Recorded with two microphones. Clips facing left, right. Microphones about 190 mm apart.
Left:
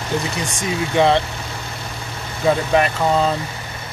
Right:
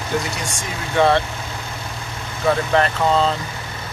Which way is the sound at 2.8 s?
10° left (ahead or behind).